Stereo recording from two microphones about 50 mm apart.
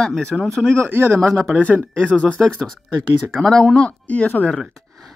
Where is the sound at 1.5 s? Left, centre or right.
Left.